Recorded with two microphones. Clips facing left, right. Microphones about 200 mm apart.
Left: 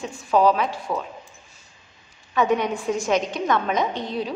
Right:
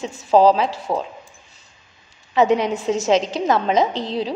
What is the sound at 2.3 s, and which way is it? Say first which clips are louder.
A woman's voice: right 4 dB; 25° right (ahead or behind).